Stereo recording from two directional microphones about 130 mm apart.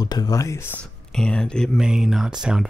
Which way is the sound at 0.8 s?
5° left (ahead or behind).